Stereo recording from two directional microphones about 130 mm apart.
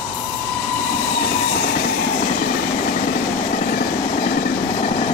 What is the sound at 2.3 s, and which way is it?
Train, 85° left.